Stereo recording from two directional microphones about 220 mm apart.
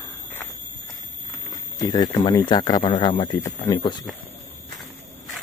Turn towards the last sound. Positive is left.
turn(degrees=20)  # may be behind; listen again after turning